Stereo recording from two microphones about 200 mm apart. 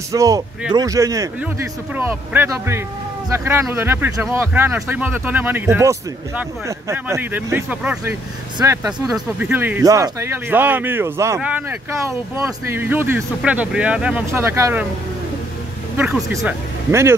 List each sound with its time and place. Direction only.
0.1 s speech: 15° right (ahead or behind)
16.4 s speech: 15° right (ahead or behind)